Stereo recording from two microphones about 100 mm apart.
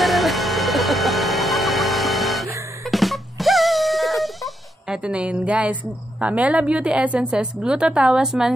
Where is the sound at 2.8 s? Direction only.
Centre (ahead or behind).